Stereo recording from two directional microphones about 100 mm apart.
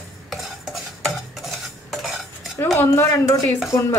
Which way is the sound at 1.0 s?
Centre (ahead or behind).